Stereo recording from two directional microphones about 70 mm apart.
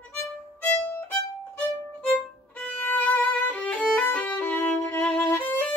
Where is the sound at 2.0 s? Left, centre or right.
Left.